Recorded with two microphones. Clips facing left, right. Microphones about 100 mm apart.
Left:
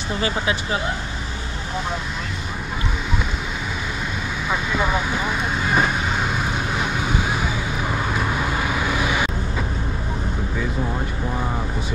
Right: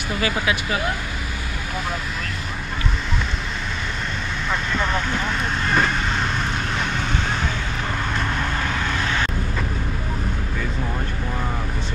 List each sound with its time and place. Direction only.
0.2 s speech: 35° left (ahead or behind)
4.5 s vehicle: 5° left (ahead or behind)